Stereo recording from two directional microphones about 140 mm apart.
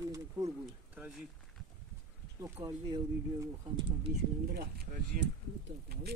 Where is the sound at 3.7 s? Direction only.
35° right (ahead or behind).